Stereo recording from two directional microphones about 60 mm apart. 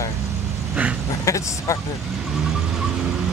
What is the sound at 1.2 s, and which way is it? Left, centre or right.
Speech, left.